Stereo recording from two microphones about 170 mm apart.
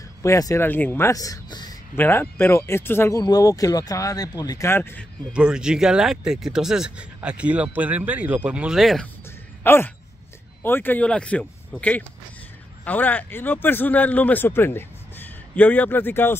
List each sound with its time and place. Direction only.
0.2 s speech: 20° left (ahead or behind)
2.0 s speech: 15° left (ahead or behind)
5.3 s speech: 5° right (ahead or behind)
9.6 s speech: 10° left (ahead or behind)